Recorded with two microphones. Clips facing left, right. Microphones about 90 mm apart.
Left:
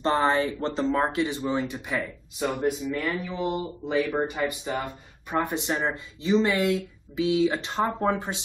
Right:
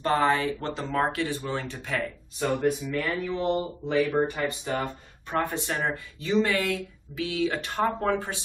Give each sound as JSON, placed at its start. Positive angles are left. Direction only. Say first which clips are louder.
{"t": 0.0, "sound": "speech", "louder": "left 1 dB", "side_deg": 25}